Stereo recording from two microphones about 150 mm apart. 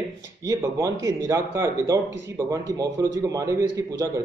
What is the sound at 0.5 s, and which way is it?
A man's voice, 20° right (ahead or behind).